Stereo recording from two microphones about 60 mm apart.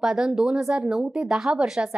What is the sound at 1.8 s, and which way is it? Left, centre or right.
Speech, right.